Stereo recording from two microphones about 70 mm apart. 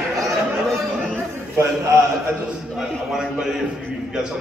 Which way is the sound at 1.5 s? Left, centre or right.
Right.